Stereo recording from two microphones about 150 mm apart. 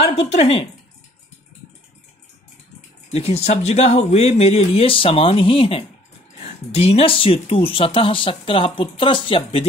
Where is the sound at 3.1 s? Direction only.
45° left (ahead or behind).